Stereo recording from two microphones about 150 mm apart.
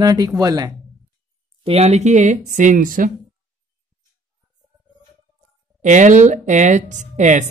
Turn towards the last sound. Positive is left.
turn(degrees=-55)  # may be behind; listen again after turning